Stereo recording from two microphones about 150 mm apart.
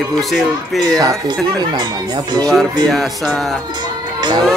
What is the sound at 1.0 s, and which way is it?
Speech, 25° right (ahead or behind).